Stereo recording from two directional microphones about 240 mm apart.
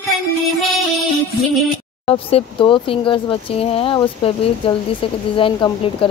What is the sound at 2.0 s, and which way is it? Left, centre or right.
Speech, left.